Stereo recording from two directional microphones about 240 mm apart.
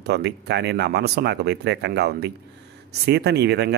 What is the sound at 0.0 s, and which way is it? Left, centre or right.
Speech, right.